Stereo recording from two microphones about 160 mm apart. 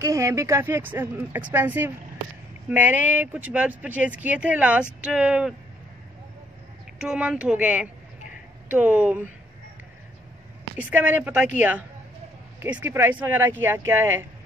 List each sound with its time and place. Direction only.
0.0 s speech: 20° right (ahead or behind)
7.0 s speech: 5° right (ahead or behind)
10.8 s speech: 10° right (ahead or behind)
12.5 s speech: 10° right (ahead or behind)